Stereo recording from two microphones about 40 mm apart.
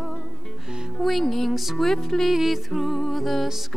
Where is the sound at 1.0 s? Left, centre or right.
Centre.